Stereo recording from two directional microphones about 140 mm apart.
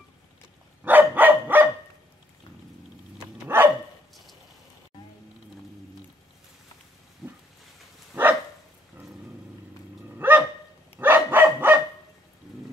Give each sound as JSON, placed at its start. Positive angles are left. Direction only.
{"t": 0.8, "sound": "dog", "side_deg": -15}
{"t": 3.4, "sound": "dog", "side_deg": -15}
{"t": 7.2, "sound": "a sound", "side_deg": 0}
{"t": 8.1, "sound": "dog", "side_deg": -10}
{"t": 10.1, "sound": "dog", "side_deg": -15}